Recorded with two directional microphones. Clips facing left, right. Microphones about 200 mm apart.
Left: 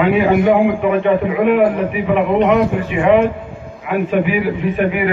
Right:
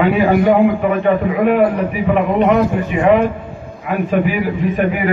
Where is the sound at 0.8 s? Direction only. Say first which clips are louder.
Even; 40° right (ahead or behind).